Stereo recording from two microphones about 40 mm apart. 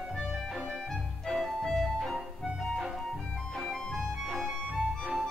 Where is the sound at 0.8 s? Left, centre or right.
Centre.